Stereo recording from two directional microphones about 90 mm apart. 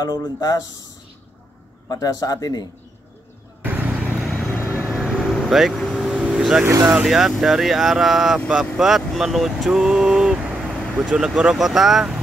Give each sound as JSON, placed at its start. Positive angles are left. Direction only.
{"t": 0.4, "sound": "a man's voice", "side_deg": 45}
{"t": 1.9, "sound": "a man's voice", "side_deg": 40}
{"t": 3.6, "sound": "vehicle", "side_deg": -20}
{"t": 4.3, "sound": "vehicle", "side_deg": 20}
{"t": 5.3, "sound": "vehicle", "side_deg": 0}
{"t": 6.6, "sound": "speech", "side_deg": -25}
{"t": 6.9, "sound": "speech", "side_deg": -10}